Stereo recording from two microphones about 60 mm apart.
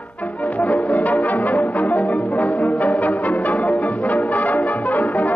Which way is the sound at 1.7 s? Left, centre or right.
Left.